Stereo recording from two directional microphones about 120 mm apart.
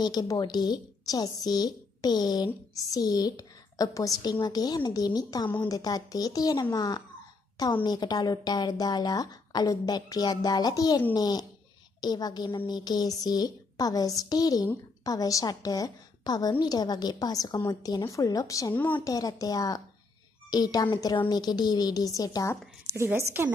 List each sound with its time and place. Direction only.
0.0 s a woman's voice: 35° left (ahead or behind)
22.9 s a woman's voice: 20° right (ahead or behind)